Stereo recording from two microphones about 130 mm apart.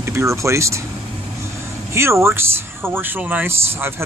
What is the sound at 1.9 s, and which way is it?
Speech, 20° right (ahead or behind).